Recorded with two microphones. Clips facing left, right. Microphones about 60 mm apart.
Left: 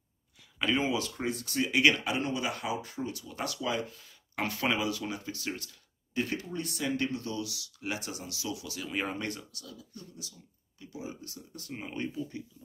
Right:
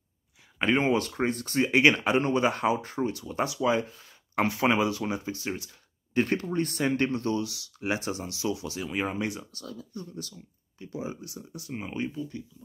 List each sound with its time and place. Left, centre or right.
0.4 s a sound: right
0.8 s speech: right
3.4 s speech: right
5.7 s speech: right
8.9 s speech: centre
9.5 s speech: right
11.2 s speech: centre
12.3 s speech: left